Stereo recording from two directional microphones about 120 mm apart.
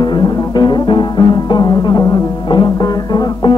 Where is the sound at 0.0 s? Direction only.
40° left (ahead or behind).